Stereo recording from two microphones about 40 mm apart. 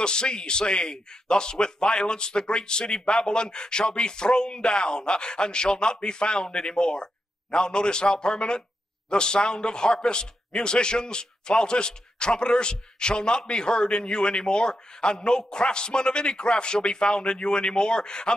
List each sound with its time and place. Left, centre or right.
0.0 s a man's voice: left